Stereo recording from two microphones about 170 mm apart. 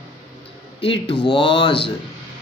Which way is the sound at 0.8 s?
30° left (ahead or behind).